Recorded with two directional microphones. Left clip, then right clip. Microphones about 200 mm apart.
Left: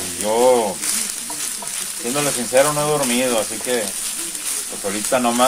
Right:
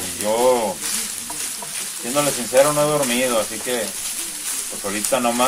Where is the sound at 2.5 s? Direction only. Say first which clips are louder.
Right 1 dB; 20° left (ahead or behind).